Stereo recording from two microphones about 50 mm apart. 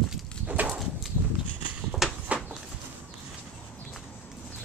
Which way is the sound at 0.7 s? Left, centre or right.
Centre.